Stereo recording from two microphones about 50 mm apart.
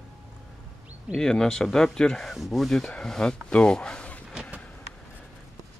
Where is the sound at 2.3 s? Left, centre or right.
Centre.